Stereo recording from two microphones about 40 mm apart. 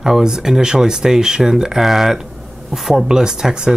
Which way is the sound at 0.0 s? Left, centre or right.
Centre.